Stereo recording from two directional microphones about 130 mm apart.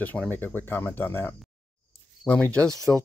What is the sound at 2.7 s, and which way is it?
Speech, 25° right (ahead or behind).